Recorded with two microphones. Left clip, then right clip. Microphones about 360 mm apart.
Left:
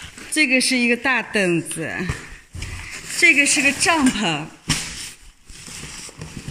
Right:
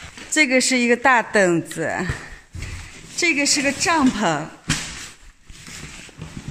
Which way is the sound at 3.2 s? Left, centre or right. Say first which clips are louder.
Left 4 dB; centre.